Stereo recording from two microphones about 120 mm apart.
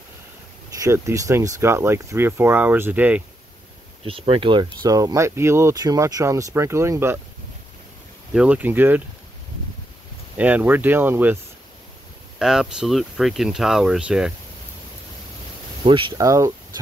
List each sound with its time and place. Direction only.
0.7 s speech: 25° right (ahead or behind)
4.0 s speech: 50° right (ahead or behind)
4.8 s speech: 30° right (ahead or behind)
8.3 s speech: 10° right (ahead or behind)
10.3 s speech: 15° right (ahead or behind)
12.4 s speech: 5° right (ahead or behind)
15.8 s speech: 45° right (ahead or behind)
16.2 s speech: 30° right (ahead or behind)